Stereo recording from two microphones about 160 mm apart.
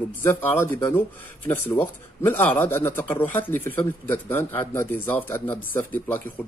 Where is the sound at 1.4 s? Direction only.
10° left (ahead or behind).